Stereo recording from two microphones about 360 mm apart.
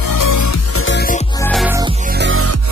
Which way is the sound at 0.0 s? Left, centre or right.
Left.